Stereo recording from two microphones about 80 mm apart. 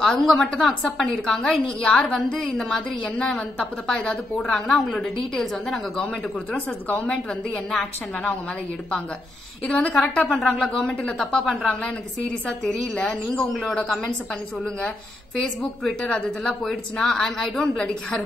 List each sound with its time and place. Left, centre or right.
0.0 s a woman's voice: centre
6.5 s speech: centre
9.7 s speech: centre
10.2 s a woman's voice: centre
15.3 s speech: centre